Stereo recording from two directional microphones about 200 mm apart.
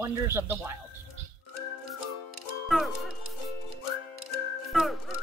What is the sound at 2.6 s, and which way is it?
Speech, centre (ahead or behind).